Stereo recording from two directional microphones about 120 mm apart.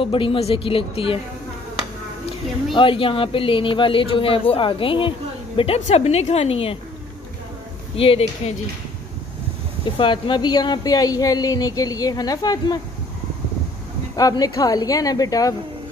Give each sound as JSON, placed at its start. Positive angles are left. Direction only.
{"t": 0.0, "sound": "speech", "side_deg": 45}
{"t": 2.7, "sound": "speech", "side_deg": 45}
{"t": 5.6, "sound": "a woman's voice", "side_deg": 55}
{"t": 7.9, "sound": "speech", "side_deg": 50}
{"t": 9.8, "sound": "speech", "side_deg": 45}
{"t": 14.1, "sound": "speech", "side_deg": 30}